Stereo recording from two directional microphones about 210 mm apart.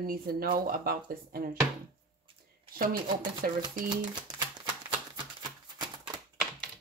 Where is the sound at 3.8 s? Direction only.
20° right (ahead or behind).